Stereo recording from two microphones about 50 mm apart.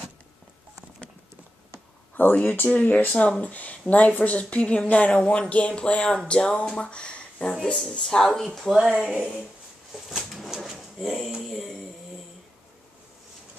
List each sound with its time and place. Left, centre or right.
2.2 s speech: left
8.0 s speech: centre
8.5 s speech: centre
9.0 s speech: centre
10.0 s pigeon: centre